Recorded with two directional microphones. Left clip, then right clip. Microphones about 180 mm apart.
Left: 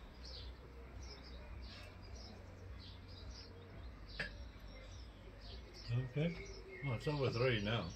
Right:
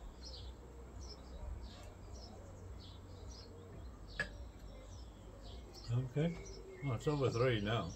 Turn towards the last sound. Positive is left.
turn(degrees=-15)  # may be behind; listen again after turning